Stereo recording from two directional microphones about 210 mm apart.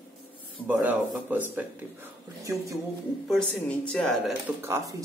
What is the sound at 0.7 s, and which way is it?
Speech, 10° right (ahead or behind).